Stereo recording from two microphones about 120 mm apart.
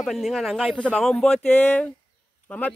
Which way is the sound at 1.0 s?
5° left (ahead or behind).